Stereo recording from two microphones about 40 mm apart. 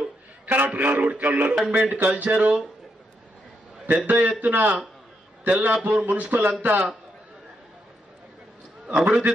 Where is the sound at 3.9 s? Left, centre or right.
Right.